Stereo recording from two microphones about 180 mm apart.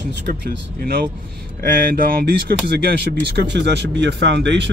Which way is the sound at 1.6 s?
55° right (ahead or behind).